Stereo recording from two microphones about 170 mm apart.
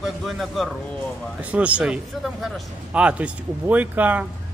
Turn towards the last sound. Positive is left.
turn(degrees=-10)  # may be behind; listen again after turning